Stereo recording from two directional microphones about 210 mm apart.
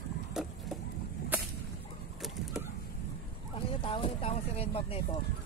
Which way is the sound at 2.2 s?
Centre (ahead or behind).